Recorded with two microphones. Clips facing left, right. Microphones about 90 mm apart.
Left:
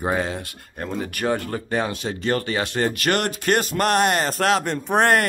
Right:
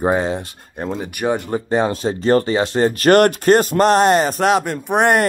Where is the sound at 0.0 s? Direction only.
25° right (ahead or behind).